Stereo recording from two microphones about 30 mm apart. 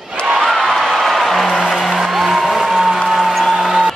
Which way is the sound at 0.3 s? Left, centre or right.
Centre.